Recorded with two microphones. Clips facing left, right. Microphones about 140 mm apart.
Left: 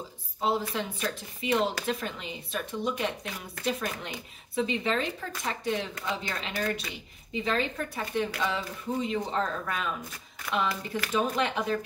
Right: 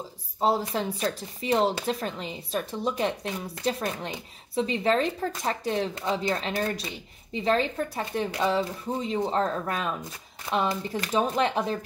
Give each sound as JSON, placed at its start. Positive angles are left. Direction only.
{"t": 0.4, "sound": "a woman's voice", "side_deg": -40}